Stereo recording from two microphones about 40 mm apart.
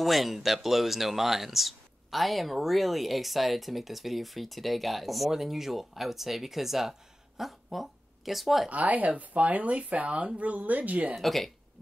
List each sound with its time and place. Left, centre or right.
0.0 s speech: centre
8.6 s speech: right
11.1 s speech: centre